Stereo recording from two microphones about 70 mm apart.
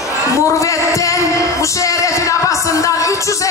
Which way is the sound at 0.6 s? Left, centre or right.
Left.